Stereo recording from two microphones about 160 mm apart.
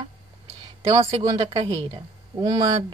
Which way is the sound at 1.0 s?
20° right (ahead or behind).